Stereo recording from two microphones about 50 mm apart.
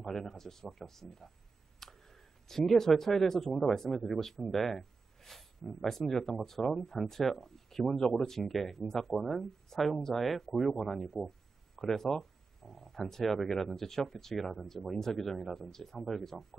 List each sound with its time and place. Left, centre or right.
0.0 s speech: centre